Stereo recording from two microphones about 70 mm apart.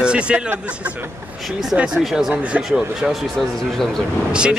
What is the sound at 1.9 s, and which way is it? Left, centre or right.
A man's voice, centre.